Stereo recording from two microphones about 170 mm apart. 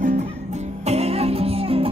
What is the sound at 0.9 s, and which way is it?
Music, 35° right (ahead or behind).